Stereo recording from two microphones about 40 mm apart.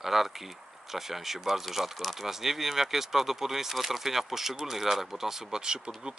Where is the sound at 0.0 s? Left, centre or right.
Centre.